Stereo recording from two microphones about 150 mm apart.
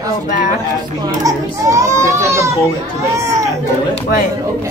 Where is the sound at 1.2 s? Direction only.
20° right (ahead or behind).